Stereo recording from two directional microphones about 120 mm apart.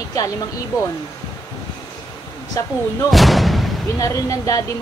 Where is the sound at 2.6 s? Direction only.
30° left (ahead or behind).